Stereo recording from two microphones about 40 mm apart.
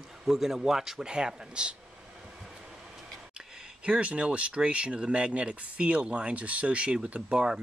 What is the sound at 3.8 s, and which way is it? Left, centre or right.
Speech, right.